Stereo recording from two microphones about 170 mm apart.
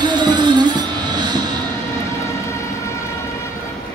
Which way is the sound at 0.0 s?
25° right (ahead or behind).